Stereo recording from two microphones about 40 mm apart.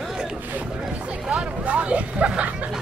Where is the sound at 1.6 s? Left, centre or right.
Right.